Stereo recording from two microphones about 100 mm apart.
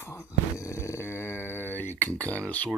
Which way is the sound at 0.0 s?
30° left (ahead or behind).